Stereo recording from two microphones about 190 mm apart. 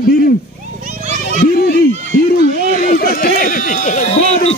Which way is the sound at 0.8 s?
40° right (ahead or behind).